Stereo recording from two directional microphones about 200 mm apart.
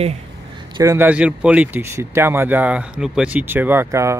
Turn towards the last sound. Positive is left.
turn(degrees=-15)  # may be behind; listen again after turning